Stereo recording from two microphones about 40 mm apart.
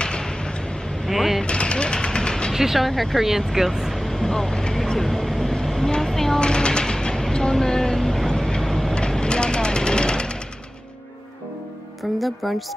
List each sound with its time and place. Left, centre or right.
0.0 s a sound: left
1.0 s vehicle: centre
1.4 s mechanisms: left
2.5 s speech: centre
2.9 s speech: centre
3.2 s speech: centre
3.9 s vehicle: centre
6.4 s music: left
9.2 s vehicle: left
12.2 s speech: centre